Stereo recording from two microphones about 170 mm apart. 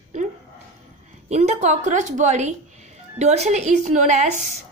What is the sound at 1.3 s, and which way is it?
A woman's voice, 40° right (ahead or behind).